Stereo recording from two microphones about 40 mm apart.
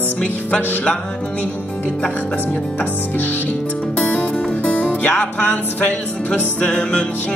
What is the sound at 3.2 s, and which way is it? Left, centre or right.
Music, left.